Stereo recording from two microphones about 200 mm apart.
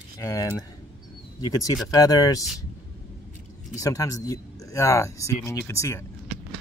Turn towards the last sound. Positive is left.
turn(degrees=15)  # may be behind; listen again after turning